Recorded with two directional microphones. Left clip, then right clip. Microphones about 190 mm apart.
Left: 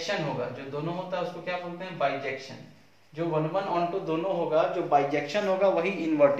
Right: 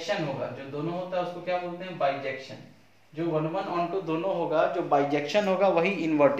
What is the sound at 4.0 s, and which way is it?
Speech, 30° right (ahead or behind).